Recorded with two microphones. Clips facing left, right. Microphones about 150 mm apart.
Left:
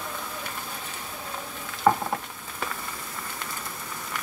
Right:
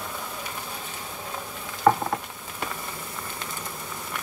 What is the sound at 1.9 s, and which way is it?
Patter, centre (ahead or behind).